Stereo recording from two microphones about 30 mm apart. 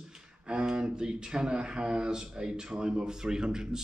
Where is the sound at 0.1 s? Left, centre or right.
Right.